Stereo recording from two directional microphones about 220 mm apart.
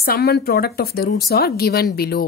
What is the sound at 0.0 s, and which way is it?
A woman's voice, 45° left (ahead or behind).